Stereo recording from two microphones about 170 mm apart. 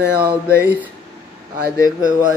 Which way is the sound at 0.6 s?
10° right (ahead or behind).